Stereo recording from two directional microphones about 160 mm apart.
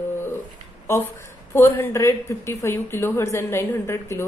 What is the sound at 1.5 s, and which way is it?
A woman's voice, 15° left (ahead or behind).